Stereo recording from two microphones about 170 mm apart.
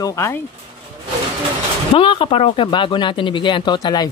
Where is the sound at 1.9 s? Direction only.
30° left (ahead or behind).